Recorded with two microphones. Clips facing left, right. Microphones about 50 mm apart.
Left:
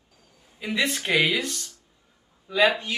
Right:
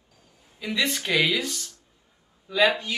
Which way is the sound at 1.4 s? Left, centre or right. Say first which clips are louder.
Even; centre.